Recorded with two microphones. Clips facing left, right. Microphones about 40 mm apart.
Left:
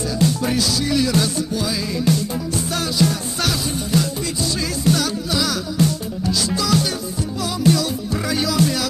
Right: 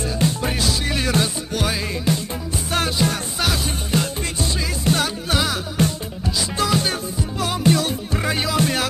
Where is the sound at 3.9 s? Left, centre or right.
Right.